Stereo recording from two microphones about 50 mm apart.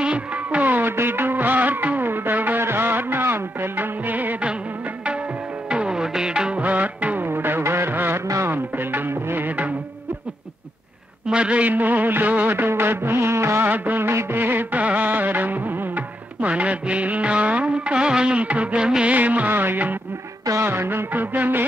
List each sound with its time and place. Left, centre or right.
0.0 s music: right
5.7 s music: centre
6.6 s music: right
7.2 s music: right
9.5 s music: right
11.2 s a sound: right
11.7 s music: right
13.7 s music of bollywood: right
14.0 s music: right
14.4 s music: right
16.3 s music of bollywood: right
19.1 s music: right
19.5 s music: right
20.6 s music: right